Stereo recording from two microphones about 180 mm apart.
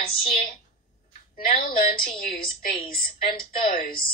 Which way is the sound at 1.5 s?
55° left (ahead or behind).